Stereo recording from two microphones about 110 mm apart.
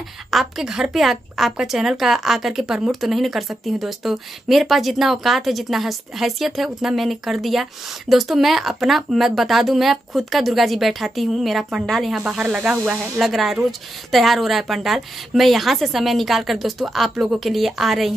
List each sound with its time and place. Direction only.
0.3 s speech: centre (ahead or behind)
12.2 s speech: 10° right (ahead or behind)
12.9 s speech: 20° right (ahead or behind)
13.2 s speech: centre (ahead or behind)